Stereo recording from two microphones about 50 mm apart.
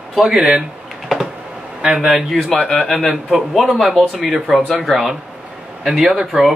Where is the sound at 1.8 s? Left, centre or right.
Centre.